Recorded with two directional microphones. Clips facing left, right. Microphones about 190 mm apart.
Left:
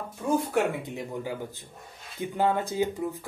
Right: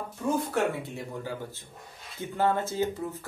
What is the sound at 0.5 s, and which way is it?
Speech, 15° left (ahead or behind).